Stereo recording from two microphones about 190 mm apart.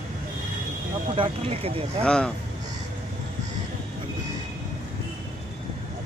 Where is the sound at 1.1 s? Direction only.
30° right (ahead or behind).